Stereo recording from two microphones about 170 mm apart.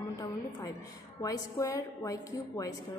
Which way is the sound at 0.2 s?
20° left (ahead or behind).